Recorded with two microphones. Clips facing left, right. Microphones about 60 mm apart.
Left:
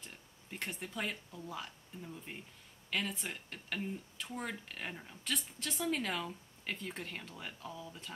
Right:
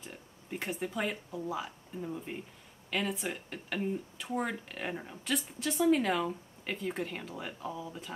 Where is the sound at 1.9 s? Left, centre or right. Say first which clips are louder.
Right 10 dB; right.